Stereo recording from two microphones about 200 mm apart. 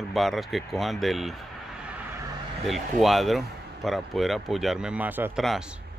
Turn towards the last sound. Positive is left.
turn(degrees=0)  # may be behind; listen again after turning